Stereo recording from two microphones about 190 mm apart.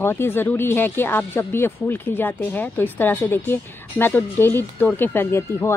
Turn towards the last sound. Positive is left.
turn(degrees=10)  # may be behind; listen again after turning